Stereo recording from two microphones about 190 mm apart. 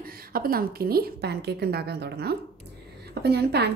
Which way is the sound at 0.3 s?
50° right (ahead or behind).